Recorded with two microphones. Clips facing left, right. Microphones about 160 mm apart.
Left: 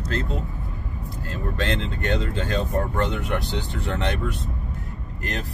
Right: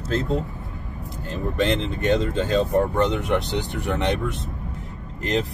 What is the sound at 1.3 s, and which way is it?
Speech, 20° right (ahead or behind).